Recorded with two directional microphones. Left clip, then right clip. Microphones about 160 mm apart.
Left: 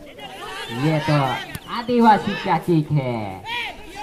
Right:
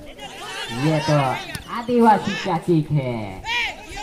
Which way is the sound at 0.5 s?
15° left (ahead or behind).